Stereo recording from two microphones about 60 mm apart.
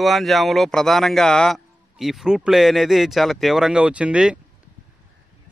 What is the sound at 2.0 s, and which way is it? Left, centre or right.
Speech, centre.